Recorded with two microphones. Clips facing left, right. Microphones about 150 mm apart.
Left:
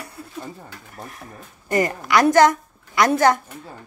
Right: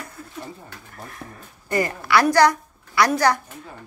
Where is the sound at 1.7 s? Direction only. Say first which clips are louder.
Left 1 dB; 20° left (ahead or behind).